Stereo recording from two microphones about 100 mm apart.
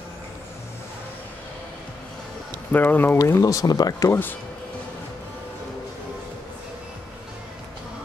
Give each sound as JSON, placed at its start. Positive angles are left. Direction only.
{"t": 2.7, "sound": "speech", "side_deg": 20}
{"t": 3.2, "sound": "speech", "side_deg": 30}
{"t": 4.1, "sound": "speech", "side_deg": 20}